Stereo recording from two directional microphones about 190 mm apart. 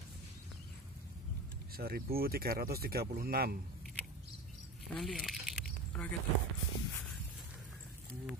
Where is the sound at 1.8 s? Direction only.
55° right (ahead or behind).